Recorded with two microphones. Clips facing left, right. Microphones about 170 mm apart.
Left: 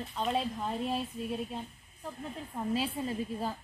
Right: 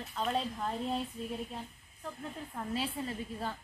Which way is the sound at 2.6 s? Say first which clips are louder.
Left 4 dB; 20° left (ahead or behind).